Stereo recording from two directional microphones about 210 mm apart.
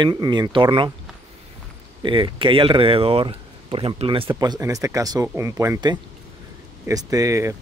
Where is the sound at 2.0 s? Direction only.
25° right (ahead or behind).